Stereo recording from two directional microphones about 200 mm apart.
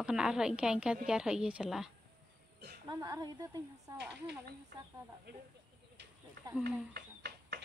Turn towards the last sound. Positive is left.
turn(degrees=-50)  # may be behind; listen again after turning